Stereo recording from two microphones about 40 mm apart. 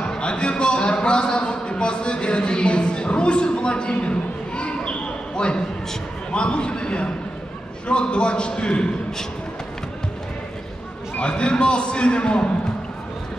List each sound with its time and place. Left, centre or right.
0.1 s a sound: left
6.3 s a man's voice: left
11.1 s a man's voice: left